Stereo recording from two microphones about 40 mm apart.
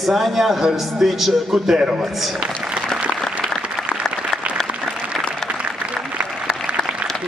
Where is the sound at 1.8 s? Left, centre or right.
Right.